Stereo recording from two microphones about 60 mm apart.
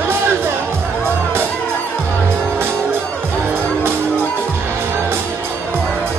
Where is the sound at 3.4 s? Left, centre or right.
Right.